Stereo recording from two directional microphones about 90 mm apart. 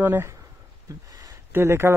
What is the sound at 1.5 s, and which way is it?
Speech, 30° right (ahead or behind).